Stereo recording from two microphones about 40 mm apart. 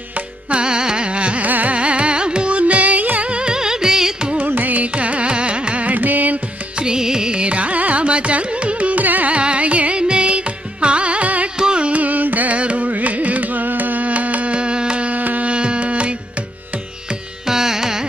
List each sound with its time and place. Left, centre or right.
0.7 s carnatic music: centre
1.4 s carnatic music: right
1.8 s carnatic music: right; by 4.3 s centre
4.4 s carnatic music: right
4.9 s carnatic music: right
6.8 s carnatic music: centre
9.0 s carnatic music: right
9.3 s carnatic music: right
11.5 s carnatic music: right
15.5 s carnatic music: right
17.5 s music: centre